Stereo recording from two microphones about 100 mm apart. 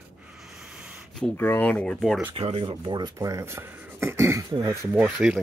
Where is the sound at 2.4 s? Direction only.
75° right (ahead or behind).